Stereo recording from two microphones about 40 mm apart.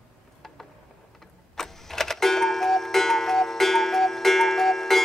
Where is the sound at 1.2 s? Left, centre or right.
Centre.